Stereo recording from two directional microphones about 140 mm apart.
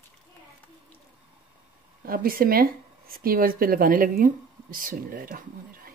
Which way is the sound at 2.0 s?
90° right.